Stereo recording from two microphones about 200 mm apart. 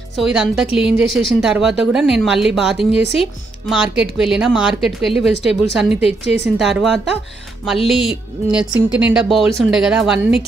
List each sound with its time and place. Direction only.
0.1 s speech: 5° right (ahead or behind)
5.9 s a woman's voice: 30° left (ahead or behind)
6.4 s speech: centre (ahead or behind)